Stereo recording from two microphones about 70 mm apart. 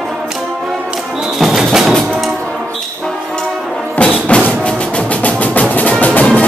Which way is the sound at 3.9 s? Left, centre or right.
Centre.